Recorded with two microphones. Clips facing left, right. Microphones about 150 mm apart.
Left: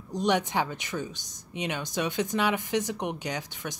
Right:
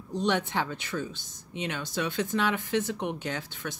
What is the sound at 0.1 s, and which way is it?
Speech, 15° left (ahead or behind).